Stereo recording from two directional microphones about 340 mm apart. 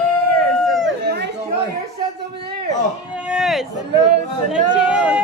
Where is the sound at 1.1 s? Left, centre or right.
Right.